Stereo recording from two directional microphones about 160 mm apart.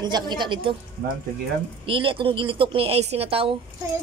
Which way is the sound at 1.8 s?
35° right (ahead or behind).